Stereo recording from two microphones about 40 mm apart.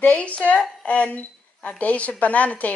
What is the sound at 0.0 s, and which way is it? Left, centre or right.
A woman's voice, left.